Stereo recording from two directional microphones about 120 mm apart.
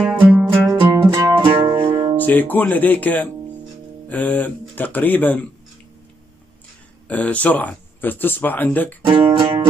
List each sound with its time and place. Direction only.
0.0 s music: 10° right (ahead or behind)
1.4 s music: 45° right (ahead or behind)
2.1 s speech: 15° left (ahead or behind)
7.1 s speech: 10° left (ahead or behind)
9.0 s speech: 45° right (ahead or behind)